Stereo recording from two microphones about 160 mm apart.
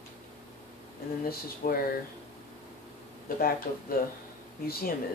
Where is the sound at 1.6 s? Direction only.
60° left (ahead or behind).